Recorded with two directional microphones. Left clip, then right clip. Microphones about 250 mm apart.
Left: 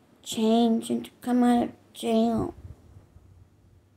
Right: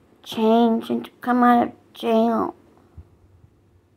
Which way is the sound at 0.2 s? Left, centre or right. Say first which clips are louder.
Right 6 dB; centre.